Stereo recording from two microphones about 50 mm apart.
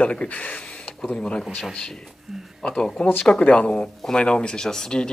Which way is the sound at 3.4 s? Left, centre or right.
Left.